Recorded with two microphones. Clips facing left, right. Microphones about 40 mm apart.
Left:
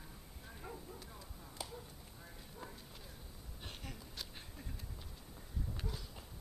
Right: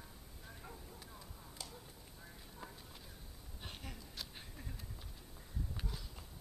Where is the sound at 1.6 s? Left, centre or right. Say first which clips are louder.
Left 5 dB; centre.